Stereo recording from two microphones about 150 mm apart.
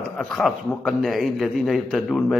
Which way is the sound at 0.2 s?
Centre (ahead or behind).